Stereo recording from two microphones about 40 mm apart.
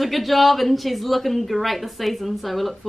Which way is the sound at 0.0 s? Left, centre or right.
Centre.